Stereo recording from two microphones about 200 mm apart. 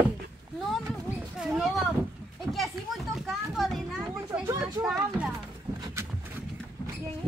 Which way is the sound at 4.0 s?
10° right (ahead or behind).